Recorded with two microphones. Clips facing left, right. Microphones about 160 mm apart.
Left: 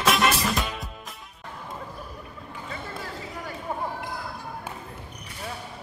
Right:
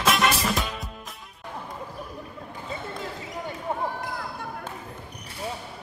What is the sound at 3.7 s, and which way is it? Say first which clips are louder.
Basketball bounce: right 2 dB; 25° right (ahead or behind).